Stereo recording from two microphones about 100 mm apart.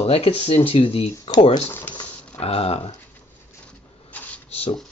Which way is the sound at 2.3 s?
90° left.